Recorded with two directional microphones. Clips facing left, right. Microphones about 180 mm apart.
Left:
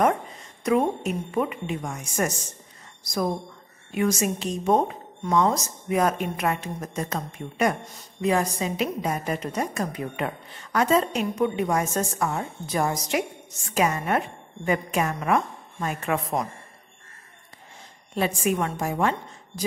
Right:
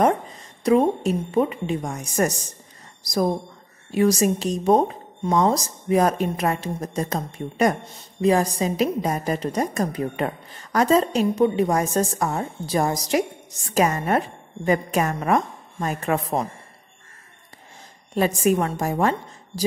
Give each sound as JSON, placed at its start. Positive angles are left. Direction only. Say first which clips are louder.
{"t": 0.7, "sound": "a woman's voice", "louder": "right 4 dB", "side_deg": -30}
{"t": 3.9, "sound": "a woman's voice", "louder": "right 5 dB", "side_deg": -35}
{"t": 18.1, "sound": "a woman's voice", "louder": "right 5 dB", "side_deg": -40}